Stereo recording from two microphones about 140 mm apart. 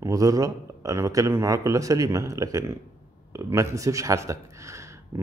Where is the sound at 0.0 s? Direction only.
25° right (ahead or behind).